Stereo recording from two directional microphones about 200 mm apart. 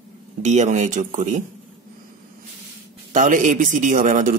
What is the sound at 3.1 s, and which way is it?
A man's voice, 40° right (ahead or behind).